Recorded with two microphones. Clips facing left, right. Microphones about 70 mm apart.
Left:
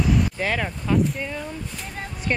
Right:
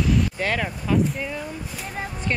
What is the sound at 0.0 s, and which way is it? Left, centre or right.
Speech, centre.